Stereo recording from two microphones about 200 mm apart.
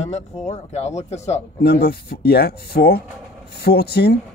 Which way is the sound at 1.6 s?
55° left (ahead or behind).